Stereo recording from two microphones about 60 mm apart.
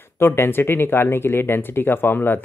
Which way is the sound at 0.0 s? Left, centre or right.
Left.